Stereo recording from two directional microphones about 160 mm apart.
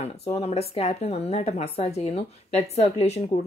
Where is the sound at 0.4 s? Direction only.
40° left (ahead or behind).